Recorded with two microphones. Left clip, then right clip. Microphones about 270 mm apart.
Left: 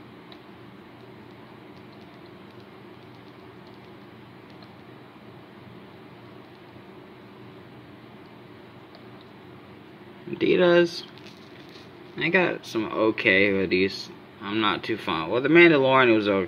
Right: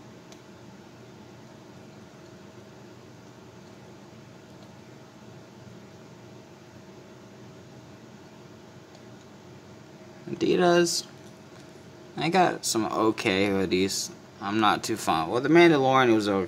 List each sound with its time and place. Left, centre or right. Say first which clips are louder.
10.3 s speech: left 3 dB; centre
12.2 s speech: even; centre